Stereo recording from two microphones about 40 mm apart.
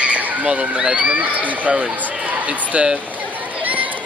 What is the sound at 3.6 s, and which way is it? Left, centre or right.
Chatter, right.